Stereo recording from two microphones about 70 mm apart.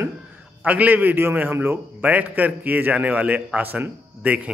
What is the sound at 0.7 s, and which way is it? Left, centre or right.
A man's voice, right.